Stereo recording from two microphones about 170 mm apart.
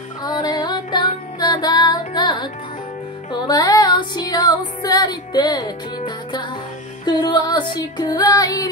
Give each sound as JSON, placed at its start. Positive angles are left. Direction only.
{"t": 0.2, "sound": "music", "side_deg": 25}